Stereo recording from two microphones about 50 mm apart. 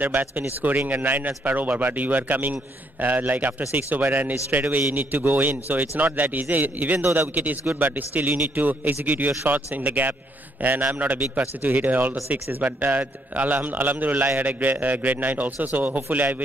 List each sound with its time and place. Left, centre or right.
0.0 s a man's voice: right